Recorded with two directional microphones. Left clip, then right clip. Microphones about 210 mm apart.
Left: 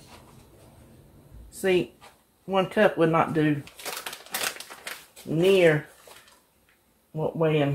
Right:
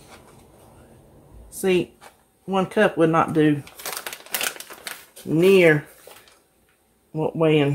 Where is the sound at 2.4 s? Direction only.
30° right (ahead or behind).